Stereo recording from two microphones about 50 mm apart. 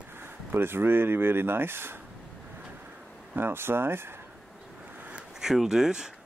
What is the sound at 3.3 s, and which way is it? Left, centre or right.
Speech, right.